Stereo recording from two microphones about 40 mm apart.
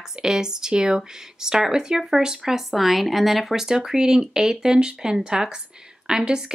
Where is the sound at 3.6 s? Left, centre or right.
Centre.